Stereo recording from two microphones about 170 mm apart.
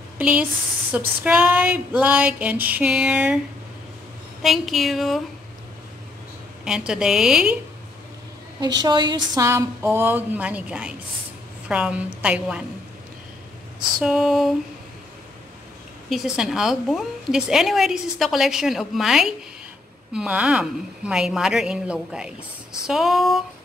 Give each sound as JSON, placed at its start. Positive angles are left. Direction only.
{"t": 0.2, "sound": "speech", "side_deg": -5}
{"t": 0.9, "sound": "a sound", "side_deg": -10}
{"t": 4.4, "sound": "a woman's voice", "side_deg": 0}
{"t": 6.6, "sound": "a woman's voice", "side_deg": -5}
{"t": 8.5, "sound": "a sound", "side_deg": -25}
{"t": 13.9, "sound": "a woman's voice", "side_deg": -5}
{"t": 16.1, "sound": "a woman's voice", "side_deg": 0}